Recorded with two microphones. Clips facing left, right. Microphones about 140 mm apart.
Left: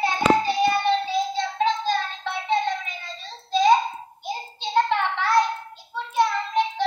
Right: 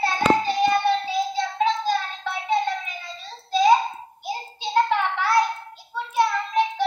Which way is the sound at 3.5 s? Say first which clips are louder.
Right 1 dB; 5° right (ahead or behind).